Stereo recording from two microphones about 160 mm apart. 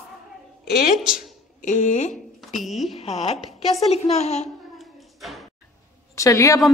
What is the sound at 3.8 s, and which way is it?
Speech, 40° left (ahead or behind).